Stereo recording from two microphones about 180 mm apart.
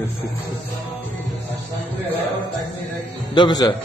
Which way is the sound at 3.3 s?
25° left (ahead or behind).